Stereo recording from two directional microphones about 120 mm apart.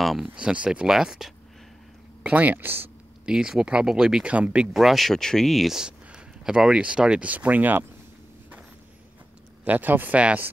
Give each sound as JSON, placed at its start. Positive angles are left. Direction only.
{"t": 0.0, "sound": "speech", "side_deg": 0}
{"t": 3.3, "sound": "speech", "side_deg": -5}
{"t": 9.7, "sound": "speech", "side_deg": -15}